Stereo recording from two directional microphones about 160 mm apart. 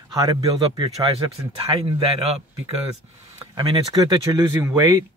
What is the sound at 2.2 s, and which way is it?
Speech, 40° right (ahead or behind).